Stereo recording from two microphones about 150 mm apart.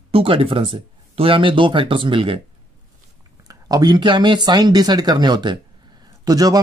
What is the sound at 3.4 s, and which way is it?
Speech, 25° right (ahead or behind).